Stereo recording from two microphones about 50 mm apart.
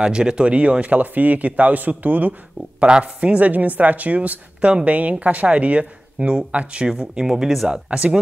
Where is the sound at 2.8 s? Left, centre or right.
Right; by 7.7 s centre.